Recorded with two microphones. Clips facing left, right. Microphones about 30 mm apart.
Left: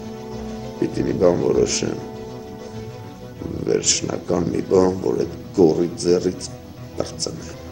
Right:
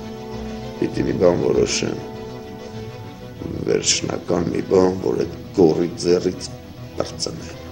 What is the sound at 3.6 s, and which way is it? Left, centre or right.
Speech, right.